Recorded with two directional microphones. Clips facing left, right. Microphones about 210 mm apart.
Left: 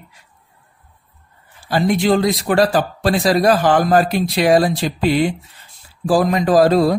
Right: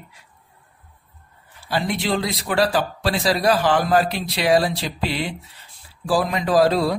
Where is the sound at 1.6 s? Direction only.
45° left (ahead or behind).